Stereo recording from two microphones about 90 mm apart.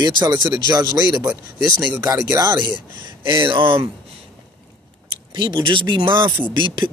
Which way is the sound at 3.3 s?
65° right (ahead or behind).